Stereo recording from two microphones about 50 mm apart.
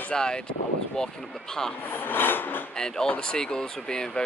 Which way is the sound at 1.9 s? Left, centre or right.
Left.